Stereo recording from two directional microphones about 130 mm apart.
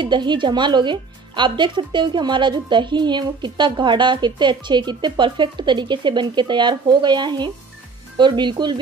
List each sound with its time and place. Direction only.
0.0 s speech: 35° right (ahead or behind)